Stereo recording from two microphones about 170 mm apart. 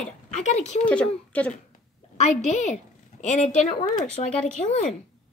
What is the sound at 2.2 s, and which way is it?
A woman's voice, 40° left (ahead or behind).